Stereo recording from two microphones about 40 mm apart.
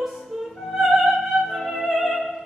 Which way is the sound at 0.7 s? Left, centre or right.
Centre.